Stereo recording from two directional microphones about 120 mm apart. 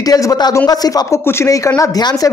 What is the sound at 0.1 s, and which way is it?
A woman's voice, 30° left (ahead or behind).